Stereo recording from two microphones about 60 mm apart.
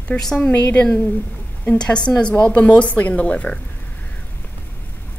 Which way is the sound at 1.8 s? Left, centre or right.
Centre.